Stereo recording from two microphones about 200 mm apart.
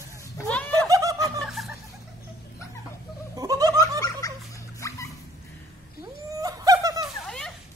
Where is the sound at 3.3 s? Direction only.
20° right (ahead or behind).